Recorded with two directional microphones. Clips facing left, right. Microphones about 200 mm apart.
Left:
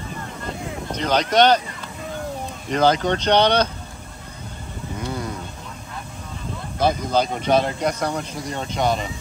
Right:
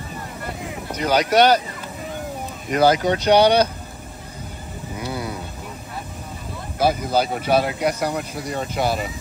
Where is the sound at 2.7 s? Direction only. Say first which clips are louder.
Right 2 dB; 10° right (ahead or behind).